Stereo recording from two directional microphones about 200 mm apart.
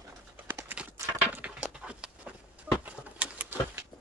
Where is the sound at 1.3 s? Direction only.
5° right (ahead or behind).